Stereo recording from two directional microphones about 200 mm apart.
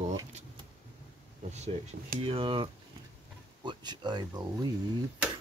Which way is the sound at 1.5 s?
35° right (ahead or behind).